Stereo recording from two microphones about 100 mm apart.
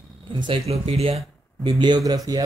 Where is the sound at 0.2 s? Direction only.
55° right (ahead or behind).